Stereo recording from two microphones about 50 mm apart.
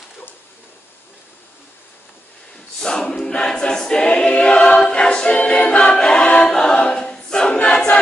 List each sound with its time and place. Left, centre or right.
2.9 s choir: centre
6.5 s a capella: centre
7.5 s choir: left